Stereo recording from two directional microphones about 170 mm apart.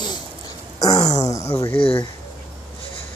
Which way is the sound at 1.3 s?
20° left (ahead or behind).